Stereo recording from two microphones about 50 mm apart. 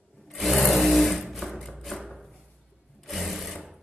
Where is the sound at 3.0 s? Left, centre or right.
Centre.